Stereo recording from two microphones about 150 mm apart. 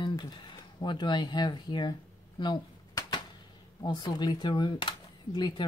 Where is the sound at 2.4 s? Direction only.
30° left (ahead or behind).